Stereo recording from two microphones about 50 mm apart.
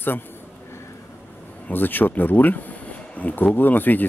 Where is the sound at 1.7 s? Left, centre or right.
Left.